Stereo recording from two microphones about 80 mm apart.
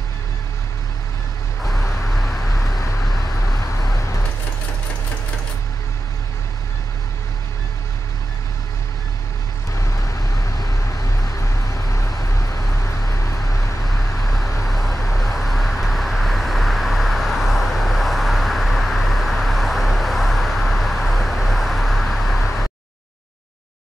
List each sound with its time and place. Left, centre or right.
11.9 s vehicle: left
14.3 s vehicle: centre